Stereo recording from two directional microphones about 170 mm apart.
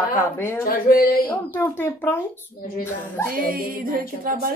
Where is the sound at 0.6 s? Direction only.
60° left (ahead or behind).